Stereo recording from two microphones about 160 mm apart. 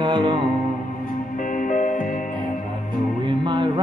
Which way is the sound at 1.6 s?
55° left (ahead or behind).